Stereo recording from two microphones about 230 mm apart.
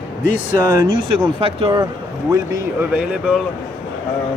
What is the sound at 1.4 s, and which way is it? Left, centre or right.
A man's voice, right.